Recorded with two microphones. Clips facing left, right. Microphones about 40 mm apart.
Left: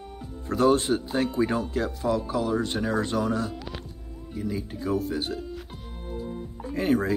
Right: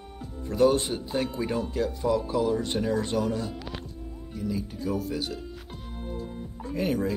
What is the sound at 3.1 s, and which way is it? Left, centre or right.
Speech, centre.